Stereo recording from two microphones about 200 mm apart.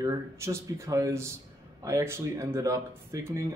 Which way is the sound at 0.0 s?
15° right (ahead or behind).